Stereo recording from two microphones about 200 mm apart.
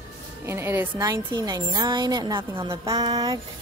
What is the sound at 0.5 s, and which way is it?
A woman's voice, 10° right (ahead or behind).